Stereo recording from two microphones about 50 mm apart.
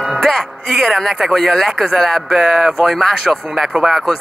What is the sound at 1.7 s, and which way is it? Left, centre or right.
Speech, centre.